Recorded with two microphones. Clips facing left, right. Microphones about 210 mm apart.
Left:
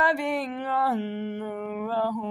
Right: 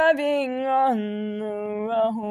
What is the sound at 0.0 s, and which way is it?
Mantra, 20° right (ahead or behind).